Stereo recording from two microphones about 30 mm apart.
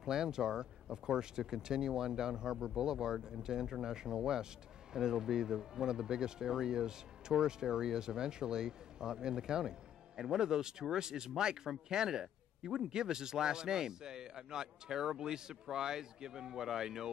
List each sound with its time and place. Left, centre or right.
0.0 s speech: right